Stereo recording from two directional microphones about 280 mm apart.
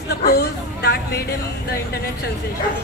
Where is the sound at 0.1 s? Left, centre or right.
Left.